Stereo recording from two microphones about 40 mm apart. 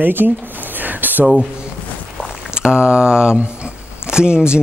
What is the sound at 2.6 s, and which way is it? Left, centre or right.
Speech, right.